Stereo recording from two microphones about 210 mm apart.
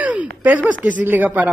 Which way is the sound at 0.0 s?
5° right (ahead or behind).